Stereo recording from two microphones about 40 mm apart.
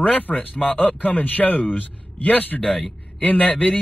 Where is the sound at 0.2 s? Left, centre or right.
Left.